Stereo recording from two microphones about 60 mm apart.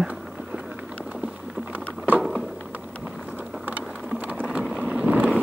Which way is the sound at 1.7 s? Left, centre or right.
Right.